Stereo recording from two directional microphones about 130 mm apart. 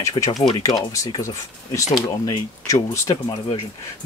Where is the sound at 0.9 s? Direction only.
25° left (ahead or behind).